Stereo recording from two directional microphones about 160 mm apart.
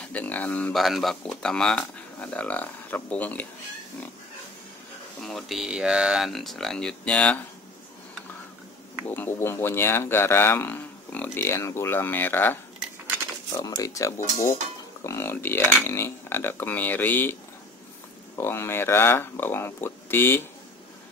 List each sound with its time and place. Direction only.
0.0 s speech: 10° left (ahead or behind)
5.2 s speech: centre (ahead or behind)
9.0 s speech: 10° left (ahead or behind)
13.5 s speech: 25° left (ahead or behind)
18.4 s speech: 15° left (ahead or behind)